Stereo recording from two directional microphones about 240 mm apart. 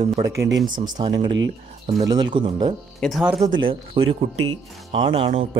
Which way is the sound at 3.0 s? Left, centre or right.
Centre.